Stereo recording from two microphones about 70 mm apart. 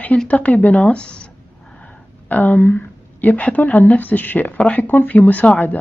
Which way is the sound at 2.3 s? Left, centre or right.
Left.